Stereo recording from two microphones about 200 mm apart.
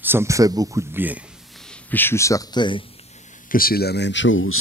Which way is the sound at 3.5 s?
50° left (ahead or behind).